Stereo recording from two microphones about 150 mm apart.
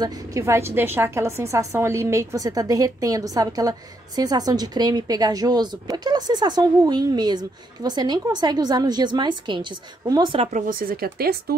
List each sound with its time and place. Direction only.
0.0 s a woman's voice: 25° right (ahead or behind)
10.4 s speech: 60° right (ahead or behind); by 11.5 s 90° right